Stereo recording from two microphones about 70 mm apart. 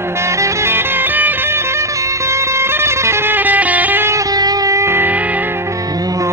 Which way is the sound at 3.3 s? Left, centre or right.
Right.